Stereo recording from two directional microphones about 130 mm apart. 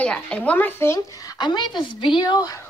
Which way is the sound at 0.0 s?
10° left (ahead or behind).